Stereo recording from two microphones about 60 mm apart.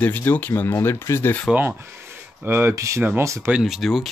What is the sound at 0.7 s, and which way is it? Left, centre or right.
Speech, left.